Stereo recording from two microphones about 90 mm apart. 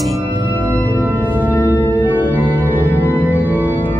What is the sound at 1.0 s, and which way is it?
Singing bowl, 20° right (ahead or behind).